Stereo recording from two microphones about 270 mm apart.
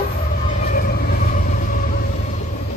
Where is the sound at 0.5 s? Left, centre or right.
Left.